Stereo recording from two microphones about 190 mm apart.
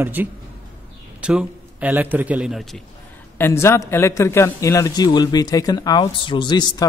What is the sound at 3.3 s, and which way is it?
A man's voice, 15° left (ahead or behind).